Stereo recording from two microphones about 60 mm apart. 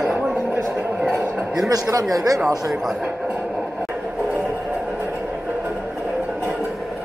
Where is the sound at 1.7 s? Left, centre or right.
Right.